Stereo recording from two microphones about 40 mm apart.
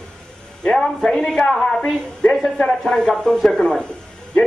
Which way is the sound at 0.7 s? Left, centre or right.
Centre.